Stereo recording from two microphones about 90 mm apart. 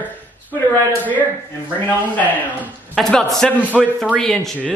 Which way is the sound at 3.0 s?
5° left (ahead or behind).